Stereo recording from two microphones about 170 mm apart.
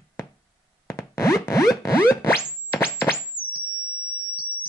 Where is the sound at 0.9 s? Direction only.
15° left (ahead or behind).